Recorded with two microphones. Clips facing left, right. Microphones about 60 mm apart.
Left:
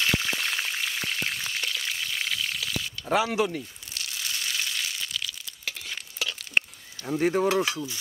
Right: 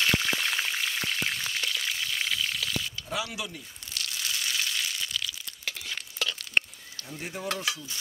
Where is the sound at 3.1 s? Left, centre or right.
Left.